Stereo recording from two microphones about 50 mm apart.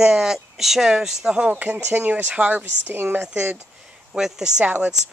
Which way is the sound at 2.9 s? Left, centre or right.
Right.